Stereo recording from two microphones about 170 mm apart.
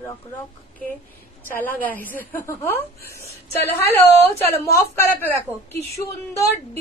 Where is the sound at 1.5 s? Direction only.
10° left (ahead or behind).